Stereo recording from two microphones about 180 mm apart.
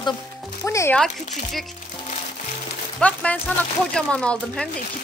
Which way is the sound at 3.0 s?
5° left (ahead or behind).